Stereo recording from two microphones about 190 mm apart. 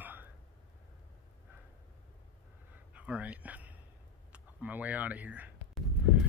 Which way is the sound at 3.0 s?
5° right (ahead or behind).